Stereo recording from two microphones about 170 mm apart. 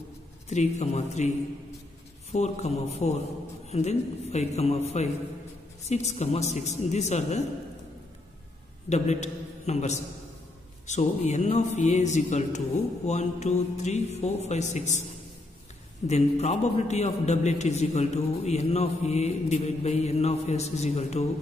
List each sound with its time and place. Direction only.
0.5 s a man's voice: 40° left (ahead or behind)
2.3 s a man's voice: 40° left (ahead or behind)
8.8 s a man's voice: 40° left (ahead or behind)
16.1 s a man's voice: 40° left (ahead or behind)